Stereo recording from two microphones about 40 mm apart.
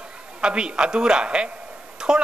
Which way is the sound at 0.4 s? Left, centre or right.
Right.